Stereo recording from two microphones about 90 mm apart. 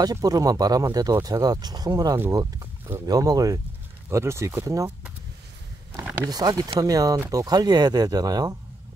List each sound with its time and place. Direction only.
0.0 s speech: 45° right (ahead or behind)
4.1 s speech: 30° right (ahead or behind)
6.2 s speech: 45° right (ahead or behind)